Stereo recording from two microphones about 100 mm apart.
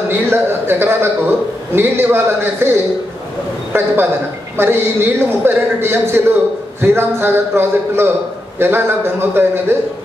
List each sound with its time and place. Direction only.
0.3 s a man's voice: 25° right (ahead or behind)